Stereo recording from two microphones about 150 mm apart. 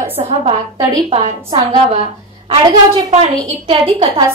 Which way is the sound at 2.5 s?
35° right (ahead or behind).